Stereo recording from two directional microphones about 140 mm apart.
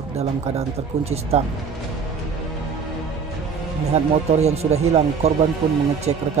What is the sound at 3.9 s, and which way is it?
Speech, 50° right (ahead or behind).